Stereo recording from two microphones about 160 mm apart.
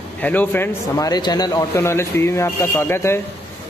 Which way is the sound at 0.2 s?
10° left (ahead or behind).